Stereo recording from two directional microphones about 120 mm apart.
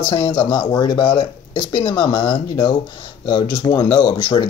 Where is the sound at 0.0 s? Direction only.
40° left (ahead or behind).